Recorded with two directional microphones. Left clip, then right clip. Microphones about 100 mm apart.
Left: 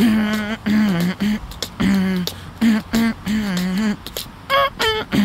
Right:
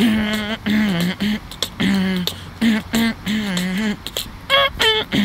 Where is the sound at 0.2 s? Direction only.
75° left (ahead or behind).